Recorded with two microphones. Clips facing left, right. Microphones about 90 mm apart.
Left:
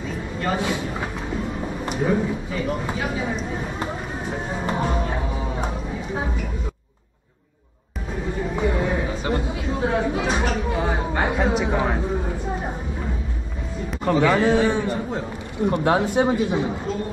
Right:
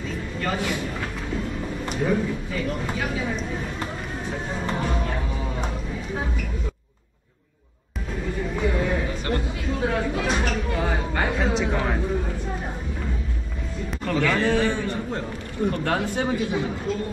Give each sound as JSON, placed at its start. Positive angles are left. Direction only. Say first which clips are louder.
{"t": 0.4, "sound": "a sound", "louder": "left 3 dB", "side_deg": 15}
{"t": 1.9, "sound": "a man's voice", "louder": "left 2 dB", "side_deg": 15}
{"t": 3.8, "sound": "music", "louder": "left 3 dB", "side_deg": 15}
{"t": 8.5, "sound": "chatter", "louder": "left 1 dB", "side_deg": 10}
{"t": 10.2, "sound": "a sound", "louder": "left 2 dB", "side_deg": 10}
{"t": 14.0, "sound": "a man's voice", "louder": "left 4 dB", "side_deg": 15}
{"t": 14.9, "sound": "a man's voice", "louder": "left 2 dB", "side_deg": 5}
{"t": 15.7, "sound": "a man's voice", "louder": "left 9 dB", "side_deg": 20}